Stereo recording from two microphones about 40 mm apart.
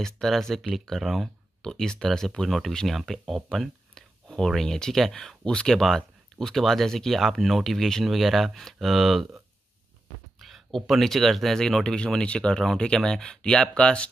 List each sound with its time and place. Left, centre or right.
0.0 s speech: centre
1.6 s speech: centre
3.9 s a sound: centre
4.5 s speech: centre
5.4 s speech: left
5.8 s speech: centre
10.4 s speech: centre; by 12.5 s left
12.5 s speech: centre